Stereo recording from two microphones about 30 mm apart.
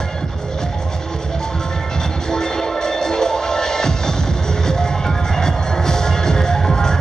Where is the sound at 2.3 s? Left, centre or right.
Left.